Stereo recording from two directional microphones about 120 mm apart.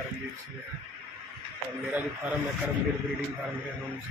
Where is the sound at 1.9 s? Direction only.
10° right (ahead or behind).